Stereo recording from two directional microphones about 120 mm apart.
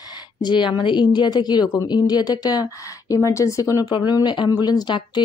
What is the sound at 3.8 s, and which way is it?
Speech, 40° left (ahead or behind).